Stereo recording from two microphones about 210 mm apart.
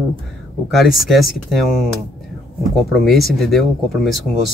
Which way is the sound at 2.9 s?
Centre (ahead or behind).